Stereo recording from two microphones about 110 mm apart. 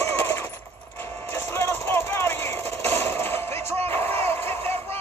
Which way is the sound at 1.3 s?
20° left (ahead or behind).